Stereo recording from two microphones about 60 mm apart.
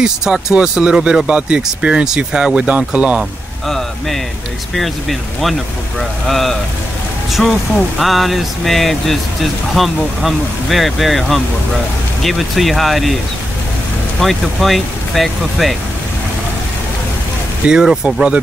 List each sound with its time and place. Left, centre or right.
0.0 s speech: centre
3.2 s speech: centre
14.2 s speech: centre
17.6 s speech: centre